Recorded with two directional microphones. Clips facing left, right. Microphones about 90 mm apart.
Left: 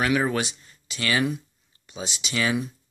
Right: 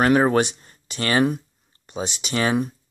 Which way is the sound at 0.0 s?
45° right (ahead or behind).